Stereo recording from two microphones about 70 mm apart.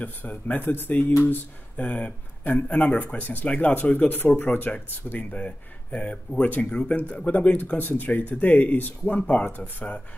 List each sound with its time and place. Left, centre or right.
0.0 s speech: left